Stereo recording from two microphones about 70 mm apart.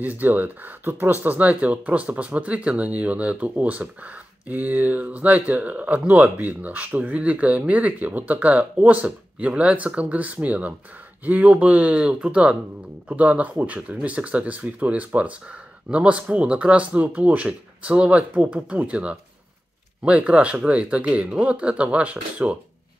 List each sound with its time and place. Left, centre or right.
0.0 s speech: right